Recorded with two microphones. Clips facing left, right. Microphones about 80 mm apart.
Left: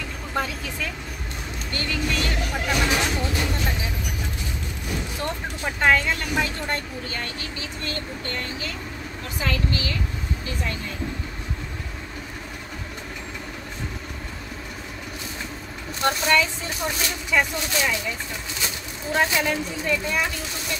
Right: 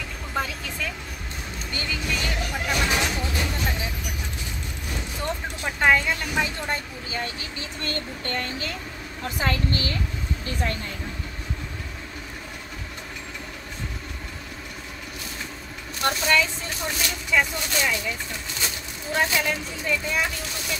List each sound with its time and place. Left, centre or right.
0.3 s vehicle: centre
1.7 s speech: centre
2.5 s music: centre
5.8 s speech: centre
7.8 s a sound: right
16.1 s speech: centre
19.1 s speech: centre